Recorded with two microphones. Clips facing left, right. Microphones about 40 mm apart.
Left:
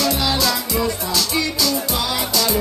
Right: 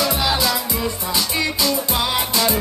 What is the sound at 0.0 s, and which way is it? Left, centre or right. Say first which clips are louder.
Music: even; centre.